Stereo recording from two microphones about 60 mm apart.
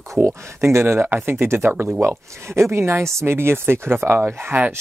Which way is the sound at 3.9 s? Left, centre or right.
Right.